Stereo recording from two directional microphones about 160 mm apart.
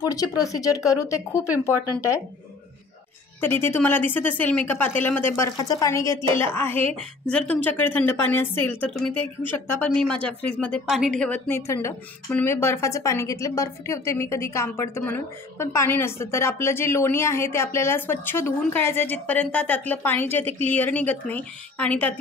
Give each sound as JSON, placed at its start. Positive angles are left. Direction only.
{"t": 0.1, "sound": "speech", "side_deg": 20}
{"t": 3.3, "sound": "speech", "side_deg": 15}